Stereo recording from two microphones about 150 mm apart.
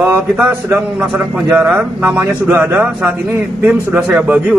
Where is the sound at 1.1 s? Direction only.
5° right (ahead or behind).